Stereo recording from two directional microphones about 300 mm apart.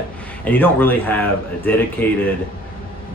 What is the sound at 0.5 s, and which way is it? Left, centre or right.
Speech, centre.